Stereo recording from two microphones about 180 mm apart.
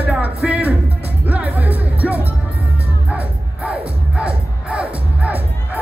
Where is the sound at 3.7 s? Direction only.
5° right (ahead or behind).